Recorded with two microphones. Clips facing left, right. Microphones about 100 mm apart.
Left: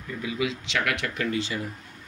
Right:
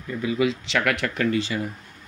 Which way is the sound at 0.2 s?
40° right (ahead or behind).